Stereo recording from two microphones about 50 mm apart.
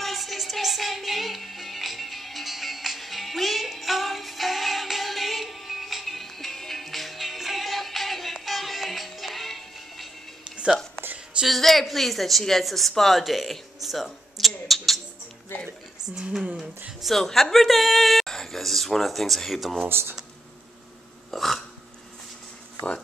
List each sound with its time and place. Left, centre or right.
0.0 s music: centre
11.4 s a woman's voice: centre
15.5 s speech: left
17.0 s a woman's voice: centre
18.2 s a sound: centre
19.9 s speech: right
21.3 s hiccup: centre